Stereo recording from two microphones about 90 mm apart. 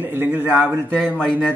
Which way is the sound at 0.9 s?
10° left (ahead or behind).